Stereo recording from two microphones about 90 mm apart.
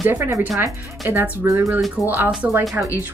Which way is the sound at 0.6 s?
25° right (ahead or behind).